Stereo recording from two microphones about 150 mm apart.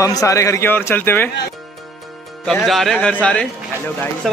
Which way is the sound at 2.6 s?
Centre (ahead or behind).